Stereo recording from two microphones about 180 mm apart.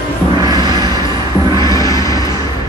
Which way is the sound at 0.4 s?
20° right (ahead or behind).